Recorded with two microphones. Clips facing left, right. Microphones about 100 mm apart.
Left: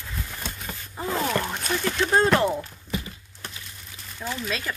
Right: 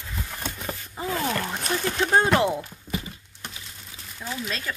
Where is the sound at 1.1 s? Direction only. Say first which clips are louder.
Left 2 dB; 25° left (ahead or behind).